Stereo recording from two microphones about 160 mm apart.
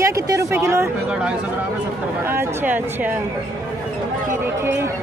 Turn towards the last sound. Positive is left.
turn(degrees=-10)  # may be behind; listen again after turning